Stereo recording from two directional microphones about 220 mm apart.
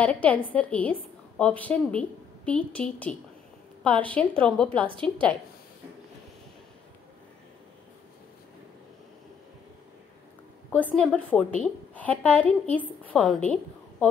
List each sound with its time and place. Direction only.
0.0 s a woman's voice: 5° left (ahead or behind)
10.7 s a woman's voice: 5° left (ahead or behind)